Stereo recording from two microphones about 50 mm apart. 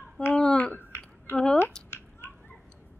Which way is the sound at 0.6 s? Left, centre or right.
Left.